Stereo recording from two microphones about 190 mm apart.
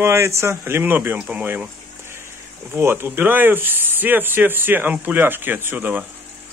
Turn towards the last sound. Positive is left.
turn(degrees=-10)  # may be behind; listen again after turning